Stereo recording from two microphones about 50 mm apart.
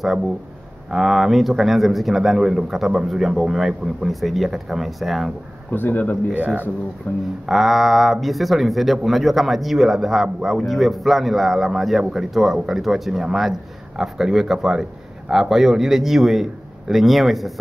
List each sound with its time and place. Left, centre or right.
0.9 s speech: centre
5.7 s speech: left
6.3 s speech: right
7.1 s speech: left
7.4 s speech: centre
10.7 s a man's voice: centre